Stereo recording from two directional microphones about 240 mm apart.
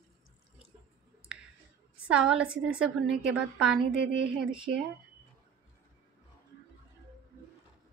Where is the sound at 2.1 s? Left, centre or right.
Centre.